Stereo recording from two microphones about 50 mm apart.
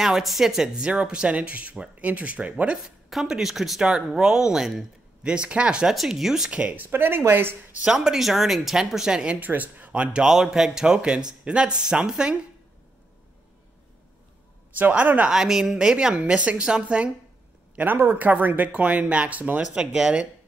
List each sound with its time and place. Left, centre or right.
0.0 s speech: centre; by 2.8 s right
3.1 s speech: centre
5.3 s speech: right
5.9 s speech: centre
6.6 s speech: right
6.9 s speech: right
7.9 s speech: centre
9.4 s speech: right
10.2 s speech: centre
14.8 s speech: right
15.2 s speech: centre
17.7 s speech: right
18.1 s speech: right; by 20.2 s centre